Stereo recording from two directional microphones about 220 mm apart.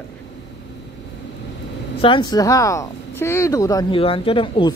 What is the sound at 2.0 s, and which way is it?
Speech, 20° left (ahead or behind).